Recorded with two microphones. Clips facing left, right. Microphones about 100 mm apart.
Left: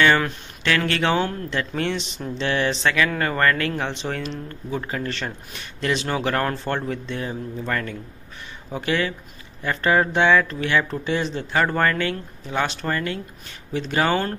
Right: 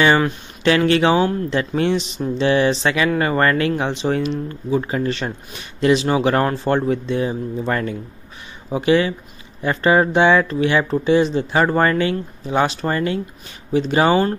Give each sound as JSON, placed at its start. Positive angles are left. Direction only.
{"t": 0.0, "sound": "speech", "side_deg": -15}